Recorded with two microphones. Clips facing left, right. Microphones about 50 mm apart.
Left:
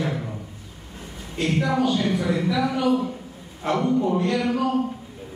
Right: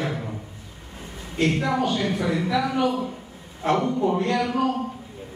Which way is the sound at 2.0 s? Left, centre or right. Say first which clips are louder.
Left 1 dB; right.